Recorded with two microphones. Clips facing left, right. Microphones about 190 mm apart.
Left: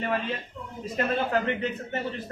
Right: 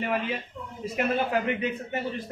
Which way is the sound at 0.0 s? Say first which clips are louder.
Even; 10° right (ahead or behind).